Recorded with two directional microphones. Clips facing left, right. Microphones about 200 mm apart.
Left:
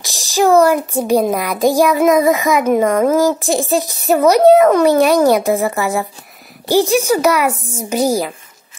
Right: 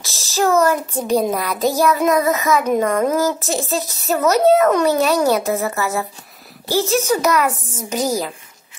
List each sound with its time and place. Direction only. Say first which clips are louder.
0.0 s a child's voice: left 4 dB; 15° left (ahead or behind)